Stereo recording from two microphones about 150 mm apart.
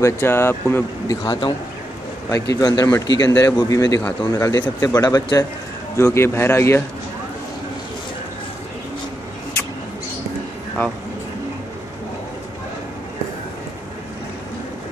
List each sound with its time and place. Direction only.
0.0 s speech: 15° left (ahead or behind)
1.2 s speech: 30° left (ahead or behind)